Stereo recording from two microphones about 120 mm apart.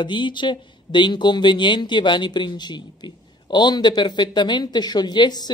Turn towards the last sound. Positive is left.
turn(degrees=35)  # may be behind; listen again after turning